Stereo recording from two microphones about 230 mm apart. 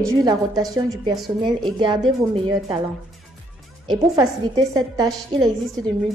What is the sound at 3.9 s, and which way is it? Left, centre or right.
A woman's voice, centre.